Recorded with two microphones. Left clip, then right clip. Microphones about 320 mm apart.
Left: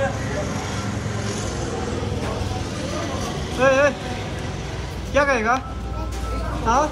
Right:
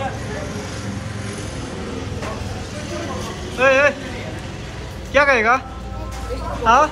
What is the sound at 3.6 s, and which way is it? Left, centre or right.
Vehicle, centre.